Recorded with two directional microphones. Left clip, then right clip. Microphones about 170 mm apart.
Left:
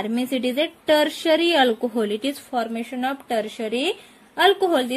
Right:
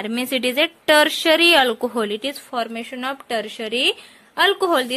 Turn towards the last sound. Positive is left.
turn(degrees=-30)  # may be behind; listen again after turning